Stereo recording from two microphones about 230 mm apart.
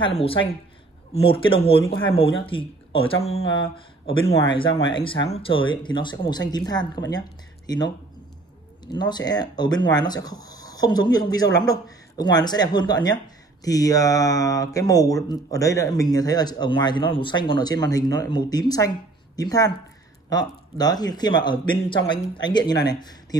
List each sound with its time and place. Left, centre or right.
0.0 s a man's voice: left